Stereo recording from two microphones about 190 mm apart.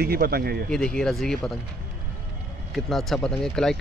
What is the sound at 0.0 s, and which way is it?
Speech, 55° right (ahead or behind).